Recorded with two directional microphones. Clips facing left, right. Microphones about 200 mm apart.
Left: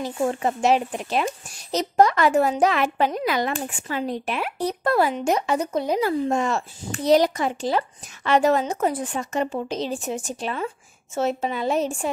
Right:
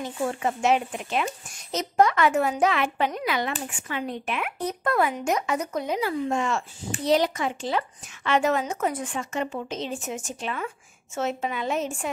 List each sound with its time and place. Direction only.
0.0 s a woman's voice: 35° left (ahead or behind)
5.9 s a woman's voice: 40° left (ahead or behind)